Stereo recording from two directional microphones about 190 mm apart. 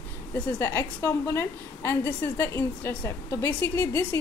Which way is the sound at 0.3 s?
10° left (ahead or behind).